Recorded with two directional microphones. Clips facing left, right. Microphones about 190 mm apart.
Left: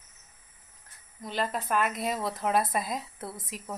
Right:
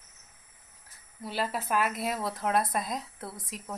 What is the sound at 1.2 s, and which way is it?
Speech, 5° right (ahead or behind).